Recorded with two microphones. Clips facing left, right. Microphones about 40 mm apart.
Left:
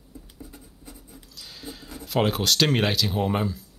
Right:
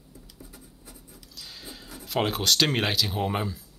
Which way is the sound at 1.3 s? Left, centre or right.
Centre.